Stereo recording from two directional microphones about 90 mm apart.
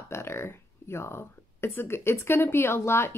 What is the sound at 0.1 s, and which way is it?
Speech, 30° left (ahead or behind).